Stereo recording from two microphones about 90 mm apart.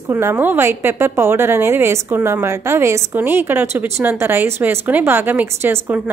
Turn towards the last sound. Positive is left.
turn(degrees=-25)  # may be behind; listen again after turning